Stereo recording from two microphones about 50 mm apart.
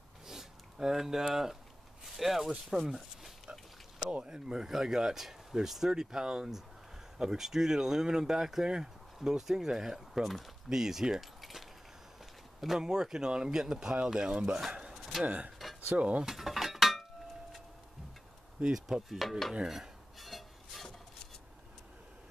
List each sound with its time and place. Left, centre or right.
0.3 s a sound: centre
2.0 s speech: centre
4.1 s speech: centre
12.5 s a sound: centre
12.8 s speech: centre
14.7 s a sound: centre
15.2 s speech: right
16.3 s mechanisms: centre
18.7 s cutlery: centre
20.2 s rub: centre